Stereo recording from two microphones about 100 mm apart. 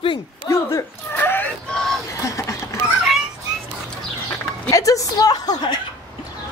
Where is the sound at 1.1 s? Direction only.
20° left (ahead or behind).